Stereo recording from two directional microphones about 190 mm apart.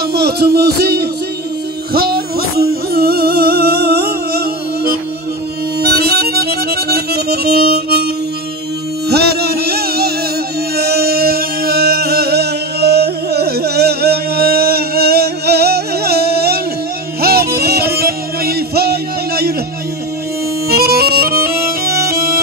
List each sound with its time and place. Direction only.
0.0 s music: 55° right (ahead or behind)
5.8 s accordion: 55° right (ahead or behind)
9.1 s music: 55° right (ahead or behind)
20.6 s music: 55° right (ahead or behind)